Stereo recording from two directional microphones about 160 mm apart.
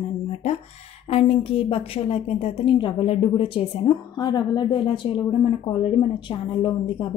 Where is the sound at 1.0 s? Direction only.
35° left (ahead or behind).